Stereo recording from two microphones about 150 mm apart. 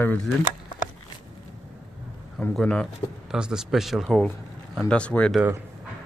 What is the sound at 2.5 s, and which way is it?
Speech, 5° left (ahead or behind).